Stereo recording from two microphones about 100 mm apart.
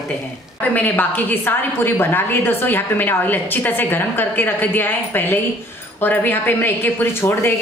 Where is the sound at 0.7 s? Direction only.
15° left (ahead or behind).